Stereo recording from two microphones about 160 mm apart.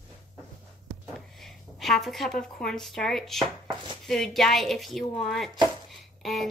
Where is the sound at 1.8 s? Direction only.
Centre (ahead or behind).